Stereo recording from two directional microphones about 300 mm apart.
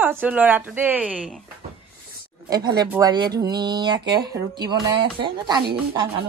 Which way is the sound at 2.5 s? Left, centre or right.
Centre.